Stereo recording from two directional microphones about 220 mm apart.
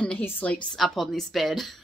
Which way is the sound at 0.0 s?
5° left (ahead or behind).